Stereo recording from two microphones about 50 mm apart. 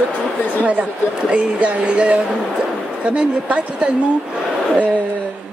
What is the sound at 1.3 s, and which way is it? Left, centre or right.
Speech, right.